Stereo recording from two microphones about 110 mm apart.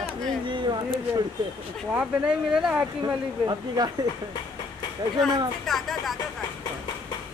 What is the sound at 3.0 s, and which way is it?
Speech, 35° right (ahead or behind).